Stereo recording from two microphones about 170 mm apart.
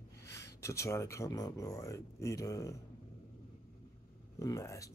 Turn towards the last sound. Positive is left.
turn(degrees=15)  # may be behind; listen again after turning